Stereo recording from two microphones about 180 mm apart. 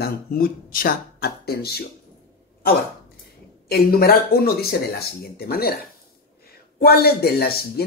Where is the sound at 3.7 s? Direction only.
55° left (ahead or behind).